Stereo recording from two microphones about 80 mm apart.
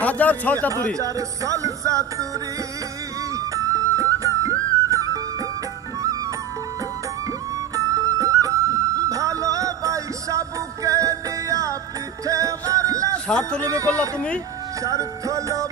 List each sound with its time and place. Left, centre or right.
0.0 s a man's voice: left
0.9 s music: right
3.3 s music: right
7.7 s music: right
13.3 s speech: centre
13.7 s music: right